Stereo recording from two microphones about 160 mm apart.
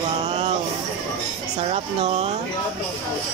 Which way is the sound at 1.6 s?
40° right (ahead or behind).